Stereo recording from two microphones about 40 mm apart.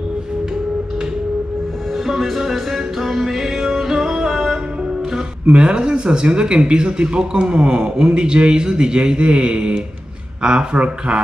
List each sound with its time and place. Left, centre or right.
2.0 s music: centre
5.5 s speech: right